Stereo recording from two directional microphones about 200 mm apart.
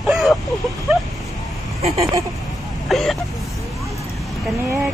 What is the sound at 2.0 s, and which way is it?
Speech, 15° right (ahead or behind).